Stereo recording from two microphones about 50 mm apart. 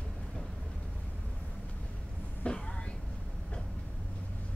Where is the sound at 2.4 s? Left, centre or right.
Left.